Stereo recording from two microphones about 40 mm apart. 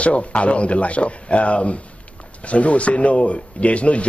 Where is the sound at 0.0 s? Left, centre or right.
Left.